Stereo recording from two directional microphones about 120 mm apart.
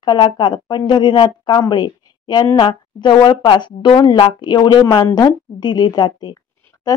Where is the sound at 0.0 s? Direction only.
40° left (ahead or behind).